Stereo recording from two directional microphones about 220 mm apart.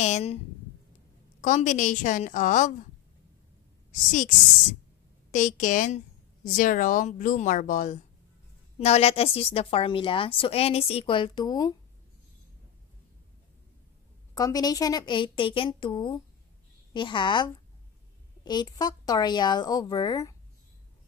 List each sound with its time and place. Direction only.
0.0 s speech: 30° left (ahead or behind)
1.4 s a woman's voice: 35° left (ahead or behind)
3.9 s a woman's voice: 35° left (ahead or behind)
5.3 s a woman's voice: 35° left (ahead or behind); by 11.7 s 15° left (ahead or behind)
14.3 s a woman's voice: 15° left (ahead or behind)